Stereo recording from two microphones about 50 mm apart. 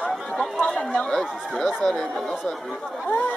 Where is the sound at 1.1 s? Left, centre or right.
Centre.